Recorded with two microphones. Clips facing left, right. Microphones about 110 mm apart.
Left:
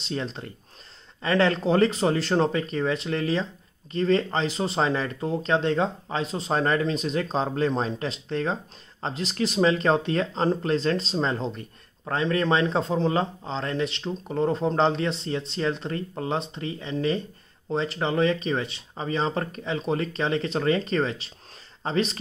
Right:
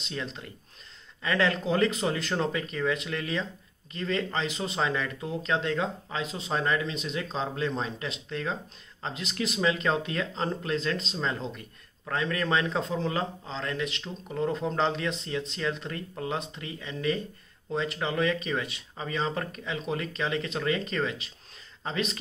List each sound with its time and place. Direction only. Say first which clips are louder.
0.0 s speech: left 5 dB; 35° left (ahead or behind)